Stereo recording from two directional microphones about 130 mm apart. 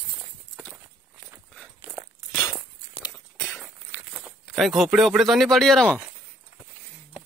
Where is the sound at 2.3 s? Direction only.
30° left (ahead or behind).